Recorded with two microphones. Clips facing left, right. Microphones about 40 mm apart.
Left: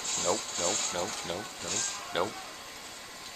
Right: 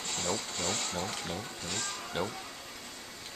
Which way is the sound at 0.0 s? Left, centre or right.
Centre.